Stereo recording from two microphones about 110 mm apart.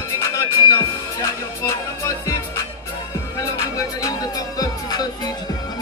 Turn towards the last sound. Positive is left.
turn(degrees=35)  # may be behind; listen again after turning